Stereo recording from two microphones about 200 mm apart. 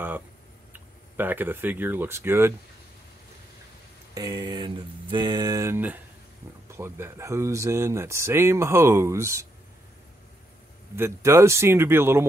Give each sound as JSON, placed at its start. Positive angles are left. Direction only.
{"t": 0.7, "sound": "speech", "side_deg": -10}
{"t": 4.1, "sound": "speech", "side_deg": -20}
{"t": 11.0, "sound": "speech", "side_deg": -15}